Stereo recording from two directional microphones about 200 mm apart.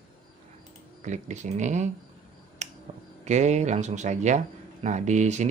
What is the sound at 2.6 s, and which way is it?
Finger snapping, 35° right (ahead or behind).